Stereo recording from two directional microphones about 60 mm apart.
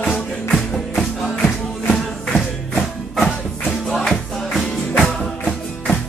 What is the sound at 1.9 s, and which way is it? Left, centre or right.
Music, centre.